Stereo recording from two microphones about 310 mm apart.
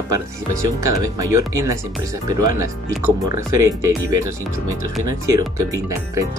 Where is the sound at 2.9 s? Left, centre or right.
Centre.